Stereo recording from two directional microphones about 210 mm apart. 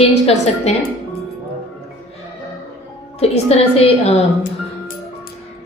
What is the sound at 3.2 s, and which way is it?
Speech, 30° left (ahead or behind).